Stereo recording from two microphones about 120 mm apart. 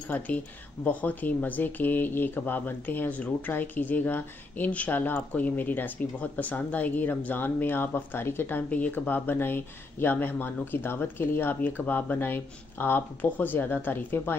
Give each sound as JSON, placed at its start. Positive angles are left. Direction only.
{"t": 0.1, "sound": "speech", "side_deg": 15}